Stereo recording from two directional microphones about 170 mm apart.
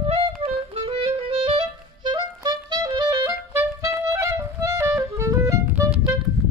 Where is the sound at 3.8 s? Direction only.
20° right (ahead or behind).